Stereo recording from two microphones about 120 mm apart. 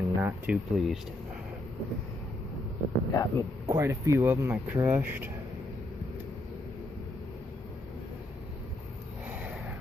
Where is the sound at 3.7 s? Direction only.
25° right (ahead or behind).